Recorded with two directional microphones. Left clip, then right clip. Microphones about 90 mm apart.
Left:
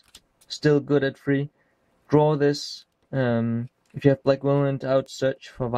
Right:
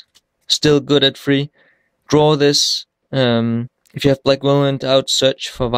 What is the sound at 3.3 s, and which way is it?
Speech, 25° right (ahead or behind).